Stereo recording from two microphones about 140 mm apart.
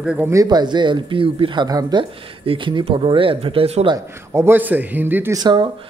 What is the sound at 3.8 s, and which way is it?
A man's voice, 20° right (ahead or behind).